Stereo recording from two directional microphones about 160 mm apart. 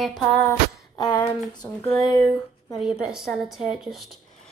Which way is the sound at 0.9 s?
25° left (ahead or behind).